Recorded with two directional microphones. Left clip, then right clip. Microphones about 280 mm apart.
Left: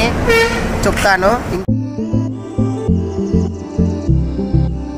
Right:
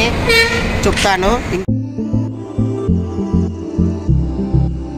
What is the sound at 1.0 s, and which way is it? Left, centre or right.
Speech, centre.